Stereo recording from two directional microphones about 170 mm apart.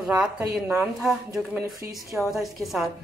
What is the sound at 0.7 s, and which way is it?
Speech, 5° right (ahead or behind).